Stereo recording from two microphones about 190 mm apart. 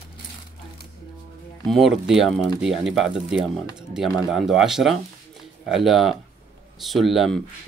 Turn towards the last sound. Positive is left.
turn(degrees=0)  # may be behind; listen again after turning